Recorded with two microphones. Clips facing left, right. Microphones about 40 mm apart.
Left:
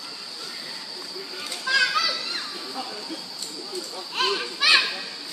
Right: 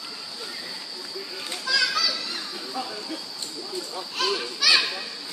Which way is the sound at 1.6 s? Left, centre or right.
Left.